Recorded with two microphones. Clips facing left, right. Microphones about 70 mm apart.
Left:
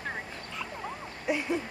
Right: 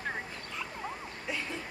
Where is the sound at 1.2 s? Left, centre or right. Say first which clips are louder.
Left 9 dB; centre.